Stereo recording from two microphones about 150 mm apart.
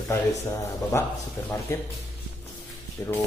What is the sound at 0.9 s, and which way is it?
Speech, 20° left (ahead or behind).